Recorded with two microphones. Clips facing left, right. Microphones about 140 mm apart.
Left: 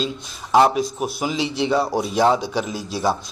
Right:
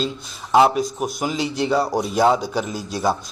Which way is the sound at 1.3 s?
40° right (ahead or behind).